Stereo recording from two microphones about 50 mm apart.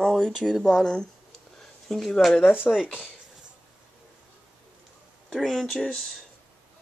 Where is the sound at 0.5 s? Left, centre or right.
Centre.